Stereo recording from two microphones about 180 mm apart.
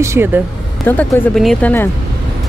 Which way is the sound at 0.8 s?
10° left (ahead or behind).